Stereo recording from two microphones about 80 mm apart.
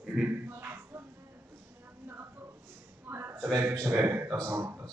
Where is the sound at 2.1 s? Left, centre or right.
Right.